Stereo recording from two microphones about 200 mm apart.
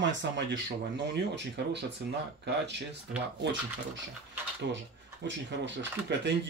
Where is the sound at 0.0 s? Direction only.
60° right (ahead or behind).